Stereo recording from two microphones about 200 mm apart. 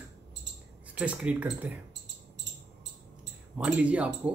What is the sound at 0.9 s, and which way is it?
Speech, 5° right (ahead or behind).